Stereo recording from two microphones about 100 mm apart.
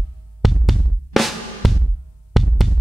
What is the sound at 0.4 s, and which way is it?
Music, centre (ahead or behind).